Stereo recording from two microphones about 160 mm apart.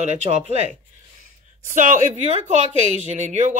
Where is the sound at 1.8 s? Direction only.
50° right (ahead or behind).